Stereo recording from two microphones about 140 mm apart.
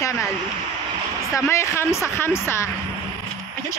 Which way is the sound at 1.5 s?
20° left (ahead or behind).